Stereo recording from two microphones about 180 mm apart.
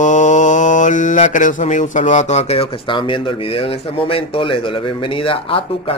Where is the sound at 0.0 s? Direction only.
45° left (ahead or behind).